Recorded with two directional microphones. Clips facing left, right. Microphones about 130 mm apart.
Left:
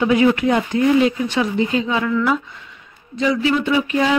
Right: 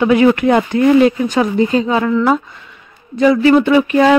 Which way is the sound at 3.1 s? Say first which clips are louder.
Right 8 dB; 55° right (ahead or behind).